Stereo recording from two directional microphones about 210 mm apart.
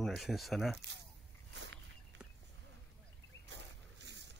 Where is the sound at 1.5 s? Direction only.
55° right (ahead or behind).